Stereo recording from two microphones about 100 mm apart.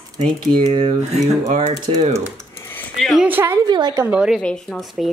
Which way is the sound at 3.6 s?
45° right (ahead or behind).